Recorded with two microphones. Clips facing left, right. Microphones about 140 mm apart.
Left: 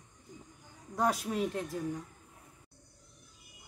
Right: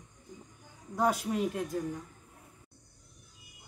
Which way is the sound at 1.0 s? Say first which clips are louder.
Right 2 dB; centre (ahead or behind).